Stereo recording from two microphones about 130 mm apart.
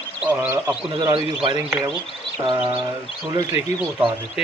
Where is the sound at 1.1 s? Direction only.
45° right (ahead or behind).